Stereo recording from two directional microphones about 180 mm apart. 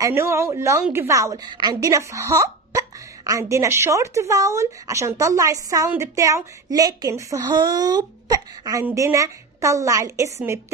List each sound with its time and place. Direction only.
0.0 s speech: 15° right (ahead or behind)